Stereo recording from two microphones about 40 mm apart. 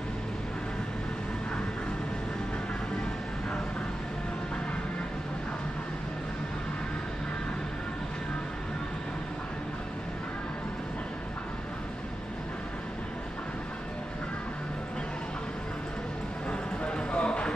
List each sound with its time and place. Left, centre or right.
16.4 s music: left